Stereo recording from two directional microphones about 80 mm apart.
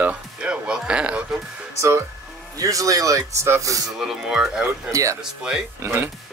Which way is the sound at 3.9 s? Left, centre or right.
Centre.